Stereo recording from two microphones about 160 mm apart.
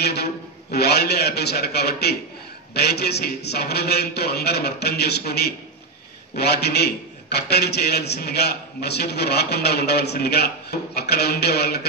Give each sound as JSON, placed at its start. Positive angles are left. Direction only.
{"t": 0.0, "sound": "a man's voice", "side_deg": 90}